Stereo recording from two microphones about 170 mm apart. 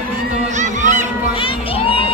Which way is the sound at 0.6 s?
45° right (ahead or behind).